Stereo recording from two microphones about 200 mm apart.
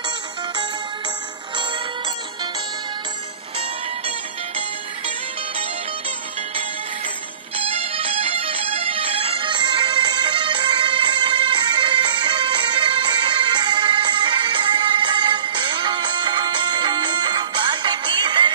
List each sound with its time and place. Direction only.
7.5 s music: 30° right (ahead or behind)